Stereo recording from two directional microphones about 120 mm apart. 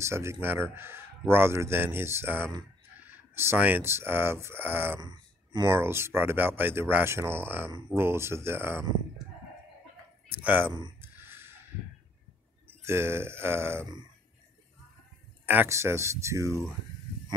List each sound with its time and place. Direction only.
0.0 s a man's voice: 25° right (ahead or behind)
5.0 s a sound: 35° right (ahead or behind)
5.7 s a man's voice: 20° right (ahead or behind)
10.4 s speech: 15° right (ahead or behind)
11.0 s a sound: 20° right (ahead or behind)
12.6 s speech: 20° right (ahead or behind)
15.4 s a man's voice: 15° right (ahead or behind)